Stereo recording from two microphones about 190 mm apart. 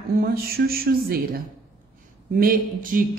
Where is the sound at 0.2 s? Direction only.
55° right (ahead or behind).